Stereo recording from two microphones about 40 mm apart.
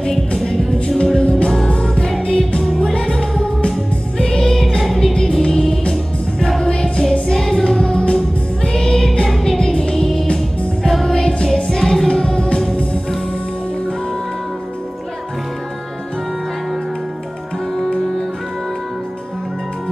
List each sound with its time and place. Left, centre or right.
0.7 s music: left
2.6 s music: centre
5.1 s music: centre
8.7 s music: centre
9.6 s music: left
10.8 s music: centre; by 13.0 s left
17.8 s music: centre